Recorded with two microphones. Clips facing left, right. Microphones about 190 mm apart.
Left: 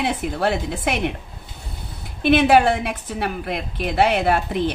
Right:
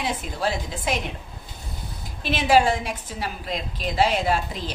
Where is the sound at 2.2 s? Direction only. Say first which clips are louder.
Left 5 dB; 60° left (ahead or behind).